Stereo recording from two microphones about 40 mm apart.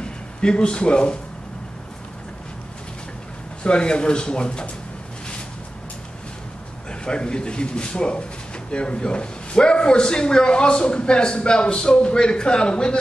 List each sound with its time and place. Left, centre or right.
0.0 s a man's voice: left
3.6 s a man's voice: left
6.9 s a man's voice: left